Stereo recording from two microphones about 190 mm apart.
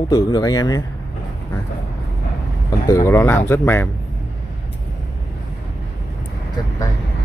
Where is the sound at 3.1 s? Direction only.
15° left (ahead or behind).